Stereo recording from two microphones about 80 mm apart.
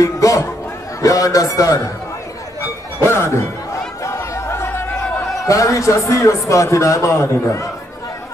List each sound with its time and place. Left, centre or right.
0.0 s chatter: left
1.0 s a man's voice: left
2.6 s music: left
4.0 s chatter: left
5.4 s a man's voice: left